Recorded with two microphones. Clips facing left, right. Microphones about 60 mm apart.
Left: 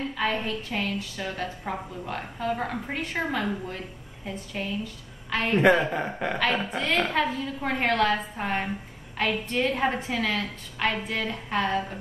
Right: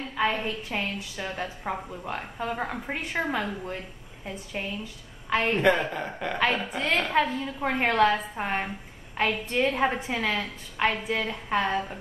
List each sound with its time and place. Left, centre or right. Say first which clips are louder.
0.2 s a woman's voice: right 2 dB; centre
5.6 s a woman's voice: left 3 dB; centre
7.1 s a woman's voice: right 1 dB; centre